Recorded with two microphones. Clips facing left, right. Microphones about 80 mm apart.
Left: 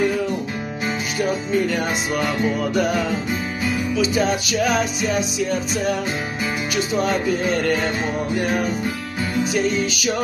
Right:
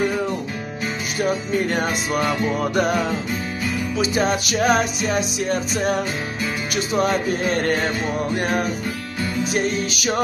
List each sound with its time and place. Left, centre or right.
1.7 s music: right
3.9 s music: right
7.0 s music: right